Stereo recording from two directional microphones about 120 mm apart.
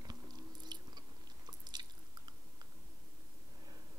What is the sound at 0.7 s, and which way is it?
Biting, 35° right (ahead or behind).